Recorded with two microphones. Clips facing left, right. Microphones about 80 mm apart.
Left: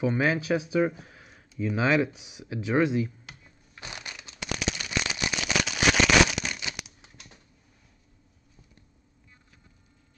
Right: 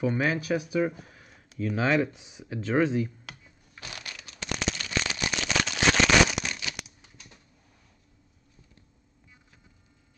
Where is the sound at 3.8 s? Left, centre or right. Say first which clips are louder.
Left 1 dB; left.